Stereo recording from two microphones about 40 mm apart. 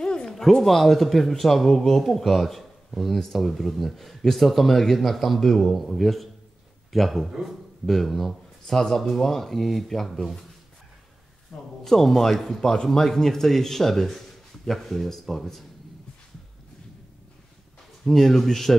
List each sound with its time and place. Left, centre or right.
0.0 s a sound: centre
0.3 s speech: centre
7.2 s a man's voice: centre
7.8 s speech: centre
11.8 s speech: centre
18.1 s speech: centre